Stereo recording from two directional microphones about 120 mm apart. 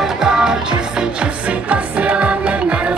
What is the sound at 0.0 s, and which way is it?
Music, 5° right (ahead or behind).